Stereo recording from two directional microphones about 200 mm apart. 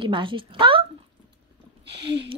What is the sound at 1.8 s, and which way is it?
Speech, 60° right (ahead or behind).